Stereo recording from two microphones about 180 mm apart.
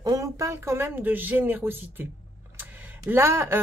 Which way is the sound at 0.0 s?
20° right (ahead or behind).